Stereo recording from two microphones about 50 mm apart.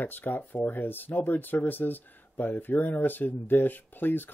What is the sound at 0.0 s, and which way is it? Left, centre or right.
Speech, left.